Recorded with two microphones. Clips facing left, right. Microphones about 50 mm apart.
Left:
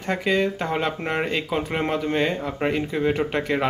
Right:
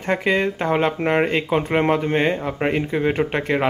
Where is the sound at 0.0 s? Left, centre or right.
Right.